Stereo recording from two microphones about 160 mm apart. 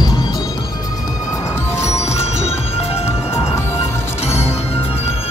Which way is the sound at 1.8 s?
15° left (ahead or behind).